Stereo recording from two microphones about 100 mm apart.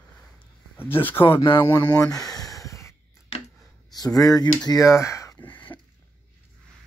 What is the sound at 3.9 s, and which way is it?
Speech, 40° left (ahead or behind).